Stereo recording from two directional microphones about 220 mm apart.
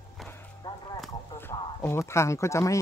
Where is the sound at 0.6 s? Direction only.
20° left (ahead or behind).